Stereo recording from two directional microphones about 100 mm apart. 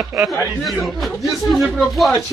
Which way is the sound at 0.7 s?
Centre (ahead or behind).